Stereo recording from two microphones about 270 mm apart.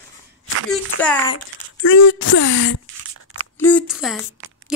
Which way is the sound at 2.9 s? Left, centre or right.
Right.